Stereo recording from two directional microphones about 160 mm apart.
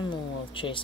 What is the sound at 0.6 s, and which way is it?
Speech, 30° left (ahead or behind).